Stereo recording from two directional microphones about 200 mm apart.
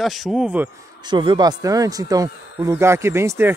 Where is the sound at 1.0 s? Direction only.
20° right (ahead or behind).